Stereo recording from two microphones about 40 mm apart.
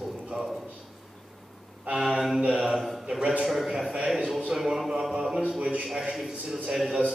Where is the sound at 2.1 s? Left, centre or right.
Centre.